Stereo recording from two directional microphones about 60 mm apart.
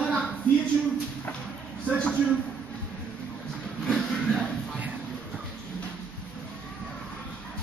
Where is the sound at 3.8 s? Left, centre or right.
Centre.